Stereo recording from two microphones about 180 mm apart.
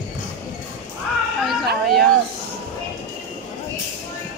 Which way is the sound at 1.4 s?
Centre (ahead or behind).